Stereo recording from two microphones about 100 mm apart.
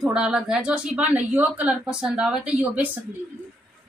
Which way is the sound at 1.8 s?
5° right (ahead or behind).